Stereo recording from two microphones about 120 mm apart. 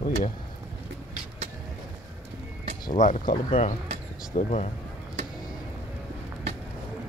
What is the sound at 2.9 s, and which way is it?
Speech, 90° left.